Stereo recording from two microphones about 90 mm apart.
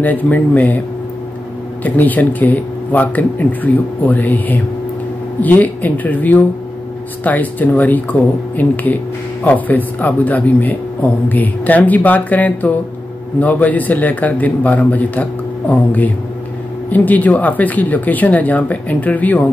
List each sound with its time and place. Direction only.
0.0 s speech: 20° left (ahead or behind)